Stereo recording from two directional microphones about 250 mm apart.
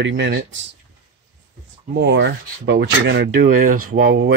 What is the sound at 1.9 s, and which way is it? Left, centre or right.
Speech, right.